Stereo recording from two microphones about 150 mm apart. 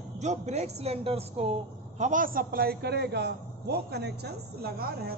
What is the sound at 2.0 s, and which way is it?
A man's voice, 60° right (ahead or behind).